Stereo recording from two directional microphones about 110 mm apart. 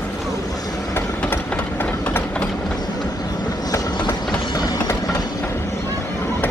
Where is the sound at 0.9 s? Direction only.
15° left (ahead or behind).